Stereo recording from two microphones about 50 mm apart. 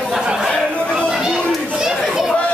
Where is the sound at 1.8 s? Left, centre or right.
Centre.